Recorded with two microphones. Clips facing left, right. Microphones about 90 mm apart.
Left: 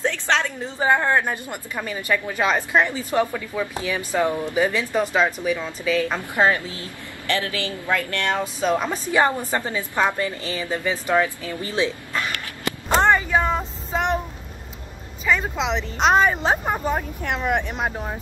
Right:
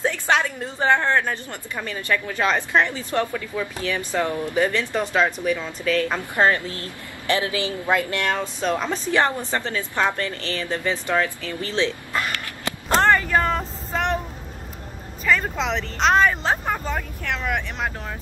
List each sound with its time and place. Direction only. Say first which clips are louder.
0.0 s a sound: right 1 dB; 10° right (ahead or behind)
0.7 s a woman's voice: even; 10° left (ahead or behind)
7.2 s a woman's voice: right 2 dB; 20° right (ahead or behind)
8.3 s a woman's voice: left 5 dB; 10° left (ahead or behind)
12.9 s a sound: even; 5° left (ahead or behind)
15.2 s a woman's voice: even; 5° left (ahead or behind); by 17.5 s 20° left (ahead or behind)
17.5 s speech: left 5 dB; 30° left (ahead or behind)